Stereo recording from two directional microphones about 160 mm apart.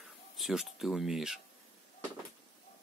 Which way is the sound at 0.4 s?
Centre (ahead or behind).